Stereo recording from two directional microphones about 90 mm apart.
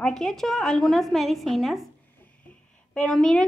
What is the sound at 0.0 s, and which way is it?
A woman's voice, 5° left (ahead or behind).